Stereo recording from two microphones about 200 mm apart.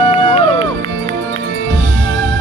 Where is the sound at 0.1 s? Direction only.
30° left (ahead or behind).